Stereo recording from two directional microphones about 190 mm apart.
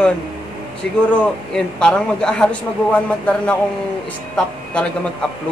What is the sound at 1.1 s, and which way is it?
A man's voice, 5° left (ahead or behind).